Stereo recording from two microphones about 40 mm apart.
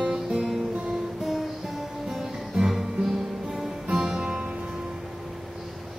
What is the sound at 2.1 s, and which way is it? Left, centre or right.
Music, centre.